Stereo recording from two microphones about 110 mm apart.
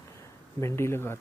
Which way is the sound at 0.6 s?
25° left (ahead or behind).